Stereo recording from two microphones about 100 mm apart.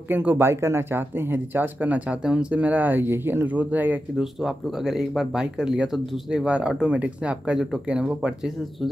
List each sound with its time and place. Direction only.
0.1 s speech: 20° right (ahead or behind)
4.2 s speech: 5° right (ahead or behind)